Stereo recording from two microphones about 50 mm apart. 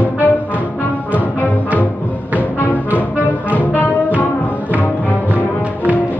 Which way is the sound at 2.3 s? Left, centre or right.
Left.